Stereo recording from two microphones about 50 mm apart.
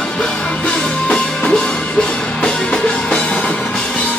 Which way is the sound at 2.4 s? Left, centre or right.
Centre.